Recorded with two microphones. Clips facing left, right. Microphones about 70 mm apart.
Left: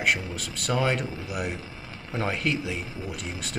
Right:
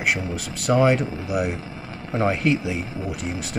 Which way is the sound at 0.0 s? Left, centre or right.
Centre.